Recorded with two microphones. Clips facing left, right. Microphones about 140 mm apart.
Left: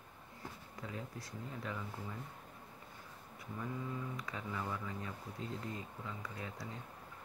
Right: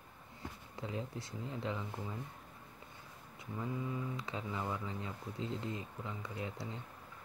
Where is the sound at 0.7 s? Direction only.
25° right (ahead or behind).